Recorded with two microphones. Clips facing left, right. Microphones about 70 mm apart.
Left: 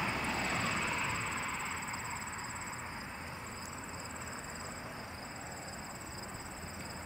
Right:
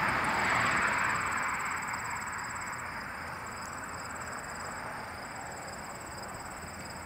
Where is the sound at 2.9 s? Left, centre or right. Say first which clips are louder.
Right 5 dB; right.